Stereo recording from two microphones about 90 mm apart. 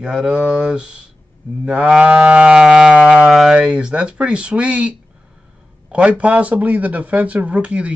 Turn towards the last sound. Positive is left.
turn(degrees=-15)  # may be behind; listen again after turning